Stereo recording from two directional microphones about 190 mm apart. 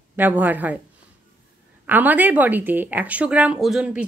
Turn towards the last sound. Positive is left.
turn(degrees=0)  # may be behind; listen again after turning